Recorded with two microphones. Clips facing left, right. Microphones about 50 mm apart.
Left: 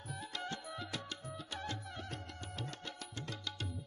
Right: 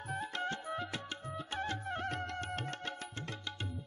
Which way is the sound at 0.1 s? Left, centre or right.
Right.